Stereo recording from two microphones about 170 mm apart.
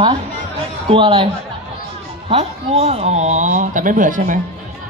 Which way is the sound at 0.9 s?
30° right (ahead or behind).